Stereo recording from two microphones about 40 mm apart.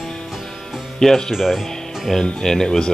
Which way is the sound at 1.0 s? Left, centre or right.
Centre.